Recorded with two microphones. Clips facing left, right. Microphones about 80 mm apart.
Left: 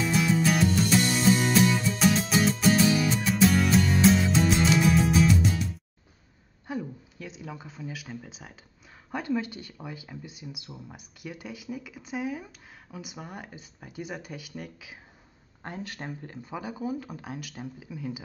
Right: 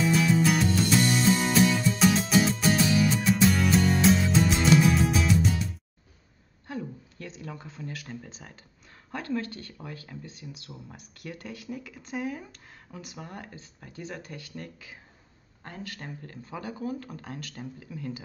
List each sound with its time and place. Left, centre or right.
0.0 s music: centre
6.7 s a sound: centre
9.1 s speech: centre
15.6 s speech: left